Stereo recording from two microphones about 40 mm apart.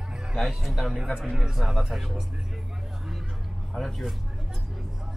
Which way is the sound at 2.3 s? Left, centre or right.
Centre.